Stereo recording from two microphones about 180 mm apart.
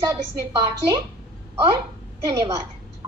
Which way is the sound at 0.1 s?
15° right (ahead or behind).